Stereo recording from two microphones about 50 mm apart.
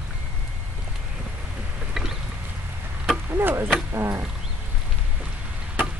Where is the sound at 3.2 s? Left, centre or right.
Right.